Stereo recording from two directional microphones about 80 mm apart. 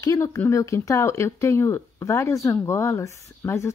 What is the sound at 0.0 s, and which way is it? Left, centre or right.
Speech, left.